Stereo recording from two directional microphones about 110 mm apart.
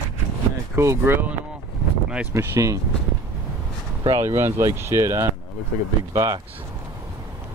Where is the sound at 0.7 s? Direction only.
20° right (ahead or behind).